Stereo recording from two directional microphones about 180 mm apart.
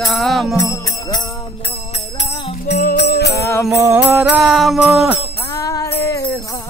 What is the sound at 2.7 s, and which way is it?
Music, 60° left (ahead or behind).